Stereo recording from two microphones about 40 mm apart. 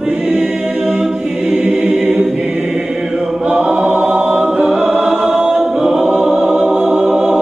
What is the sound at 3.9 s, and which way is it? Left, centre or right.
Choir, right.